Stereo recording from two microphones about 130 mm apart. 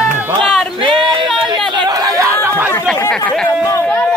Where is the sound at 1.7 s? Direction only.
30° right (ahead or behind).